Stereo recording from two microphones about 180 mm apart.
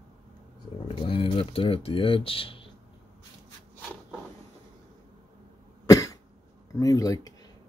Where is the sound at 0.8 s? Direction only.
30° left (ahead or behind).